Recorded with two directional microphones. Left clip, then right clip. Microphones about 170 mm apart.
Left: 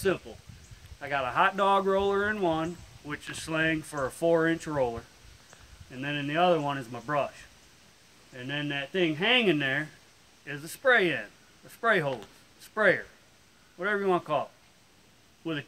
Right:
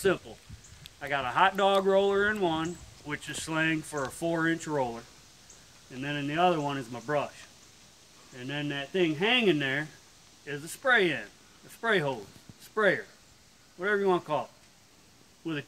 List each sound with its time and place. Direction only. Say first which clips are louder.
0.9 s speech: even; 50° left (ahead or behind)
8.4 s speech: left 2 dB; 50° left (ahead or behind)
15.4 s speech: left 1 dB; 50° left (ahead or behind)